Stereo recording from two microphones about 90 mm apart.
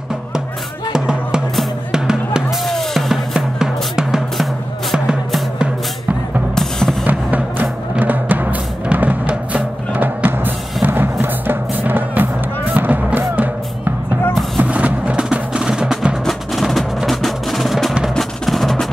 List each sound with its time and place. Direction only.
0.9 s music: 10° right (ahead or behind)
2.7 s drum: centre (ahead or behind)
4.9 s music: 10° right (ahead or behind)
6.5 s music: 5° left (ahead or behind)
7.1 s music: 20° right (ahead or behind); by 18.9 s centre (ahead or behind)